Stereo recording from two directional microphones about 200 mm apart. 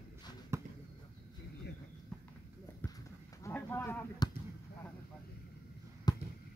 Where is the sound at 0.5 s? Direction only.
15° right (ahead or behind).